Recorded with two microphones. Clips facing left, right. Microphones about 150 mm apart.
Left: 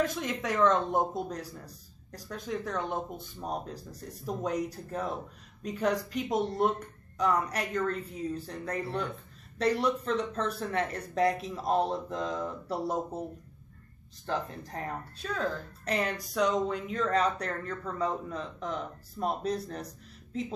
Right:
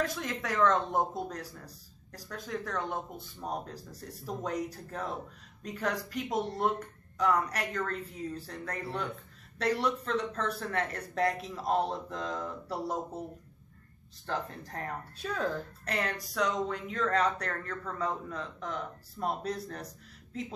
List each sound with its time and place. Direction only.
0.0 s speech: 20° left (ahead or behind)
14.2 s speech: 20° left (ahead or behind)
15.2 s speech: 5° right (ahead or behind)
15.8 s speech: 20° left (ahead or behind)